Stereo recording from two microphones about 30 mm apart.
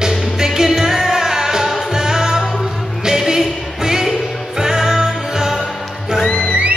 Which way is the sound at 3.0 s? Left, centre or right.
Centre.